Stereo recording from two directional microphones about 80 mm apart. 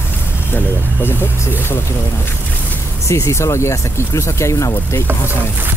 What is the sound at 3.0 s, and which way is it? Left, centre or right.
Speech, left.